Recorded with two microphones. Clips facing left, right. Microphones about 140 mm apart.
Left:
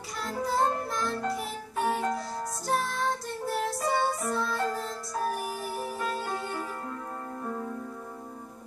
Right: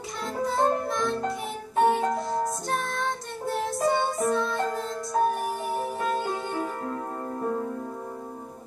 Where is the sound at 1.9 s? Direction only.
25° right (ahead or behind).